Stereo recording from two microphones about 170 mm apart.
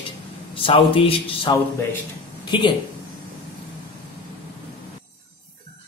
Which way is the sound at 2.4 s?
30° left (ahead or behind).